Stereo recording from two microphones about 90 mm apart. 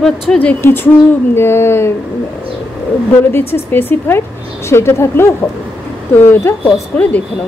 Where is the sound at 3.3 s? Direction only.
25° left (ahead or behind).